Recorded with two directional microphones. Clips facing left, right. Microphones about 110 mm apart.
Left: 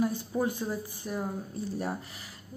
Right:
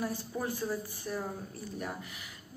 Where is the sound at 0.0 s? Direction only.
20° left (ahead or behind).